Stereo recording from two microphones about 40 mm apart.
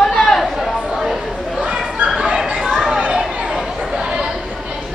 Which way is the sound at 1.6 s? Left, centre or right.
Right.